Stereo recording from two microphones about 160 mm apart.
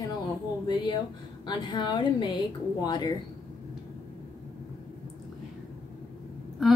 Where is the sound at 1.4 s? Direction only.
30° left (ahead or behind).